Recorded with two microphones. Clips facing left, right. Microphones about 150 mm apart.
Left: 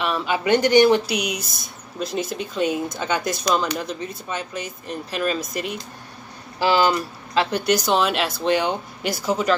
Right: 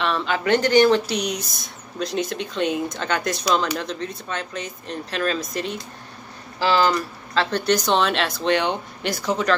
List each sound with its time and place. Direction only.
0.0 s speech: 5° left (ahead or behind)